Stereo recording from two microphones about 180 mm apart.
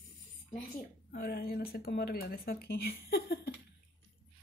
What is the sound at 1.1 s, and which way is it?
Speech, 60° left (ahead or behind).